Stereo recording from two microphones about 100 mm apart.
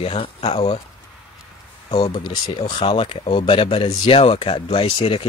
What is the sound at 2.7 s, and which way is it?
Speech, 60° left (ahead or behind).